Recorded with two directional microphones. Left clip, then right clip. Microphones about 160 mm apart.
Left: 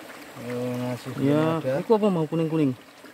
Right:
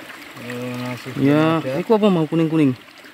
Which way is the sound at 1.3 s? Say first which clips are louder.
Right 6 dB; 15° right (ahead or behind).